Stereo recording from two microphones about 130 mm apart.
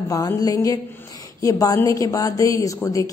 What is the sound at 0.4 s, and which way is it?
A woman's voice, 25° left (ahead or behind).